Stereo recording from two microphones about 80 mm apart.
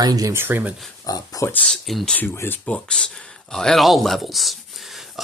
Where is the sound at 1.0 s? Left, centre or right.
Left.